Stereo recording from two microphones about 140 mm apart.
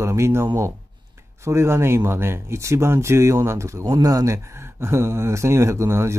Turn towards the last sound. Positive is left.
turn(degrees=-20)  # may be behind; listen again after turning